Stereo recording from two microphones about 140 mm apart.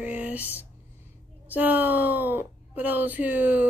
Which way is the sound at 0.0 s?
10° right (ahead or behind).